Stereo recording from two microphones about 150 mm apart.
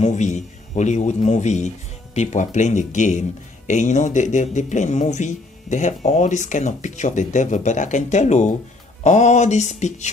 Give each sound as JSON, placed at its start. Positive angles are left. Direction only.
{"t": 0.0, "sound": "speech", "side_deg": 50}